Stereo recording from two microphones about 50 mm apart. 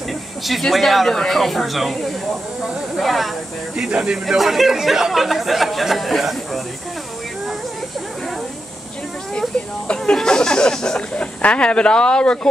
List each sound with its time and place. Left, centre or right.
0.5 s speech: centre
3.7 s speech: centre
4.4 s speech: centre
10.1 s speech: centre